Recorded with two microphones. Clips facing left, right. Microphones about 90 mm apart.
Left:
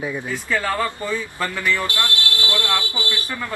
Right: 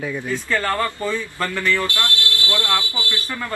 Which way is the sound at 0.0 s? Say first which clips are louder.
Right 1 dB; 15° left (ahead or behind).